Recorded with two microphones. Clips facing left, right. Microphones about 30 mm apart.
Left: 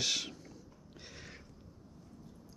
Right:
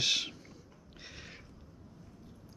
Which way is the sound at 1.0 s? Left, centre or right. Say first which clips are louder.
Right 2 dB; centre.